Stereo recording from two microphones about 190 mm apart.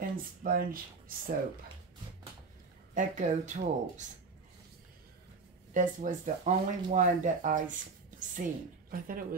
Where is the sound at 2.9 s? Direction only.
40° right (ahead or behind).